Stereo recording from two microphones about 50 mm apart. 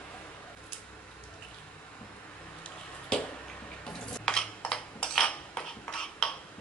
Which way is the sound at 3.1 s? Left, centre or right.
Centre.